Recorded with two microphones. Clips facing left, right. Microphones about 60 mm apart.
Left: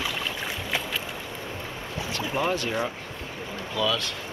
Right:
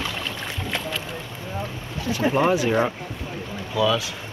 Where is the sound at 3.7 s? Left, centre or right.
Centre.